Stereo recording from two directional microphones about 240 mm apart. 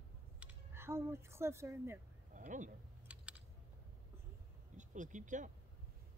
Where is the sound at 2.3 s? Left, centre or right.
Right.